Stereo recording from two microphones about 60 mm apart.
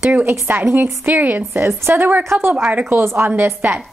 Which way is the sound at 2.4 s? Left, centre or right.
Right.